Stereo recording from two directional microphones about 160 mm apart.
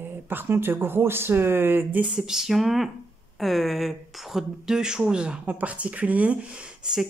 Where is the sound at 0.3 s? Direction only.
15° right (ahead or behind).